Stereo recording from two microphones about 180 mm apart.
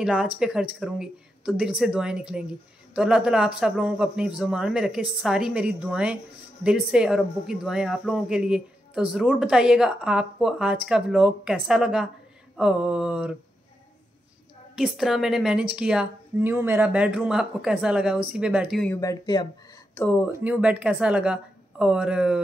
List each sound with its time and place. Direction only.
0.0 s speech: 5° right (ahead or behind)
14.8 s speech: centre (ahead or behind)
18.9 s speech: 20° left (ahead or behind)
20.4 s speech: 5° right (ahead or behind)